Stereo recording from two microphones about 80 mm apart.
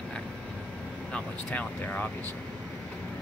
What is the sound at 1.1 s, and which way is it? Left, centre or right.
Speech, centre.